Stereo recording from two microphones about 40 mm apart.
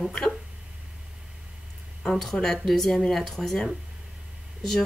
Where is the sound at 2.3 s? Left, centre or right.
Centre.